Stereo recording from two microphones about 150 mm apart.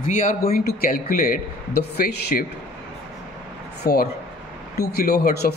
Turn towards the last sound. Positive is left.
turn(degrees=90)